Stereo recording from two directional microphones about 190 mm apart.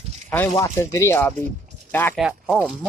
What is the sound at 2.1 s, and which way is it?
Speech, 5° right (ahead or behind).